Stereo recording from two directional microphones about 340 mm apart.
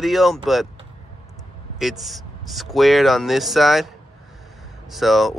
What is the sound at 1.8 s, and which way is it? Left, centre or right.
Speech, centre.